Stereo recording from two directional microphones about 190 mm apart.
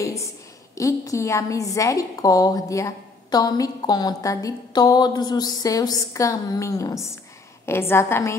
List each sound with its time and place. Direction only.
0.0 s a woman's voice: 15° left (ahead or behind)